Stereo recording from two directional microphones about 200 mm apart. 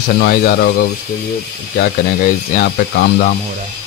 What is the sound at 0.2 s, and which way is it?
Speech, 50° left (ahead or behind).